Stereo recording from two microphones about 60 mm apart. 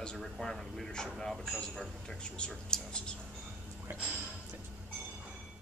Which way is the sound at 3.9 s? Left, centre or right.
Right.